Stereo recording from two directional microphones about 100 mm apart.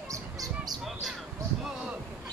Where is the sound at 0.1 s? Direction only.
35° right (ahead or behind).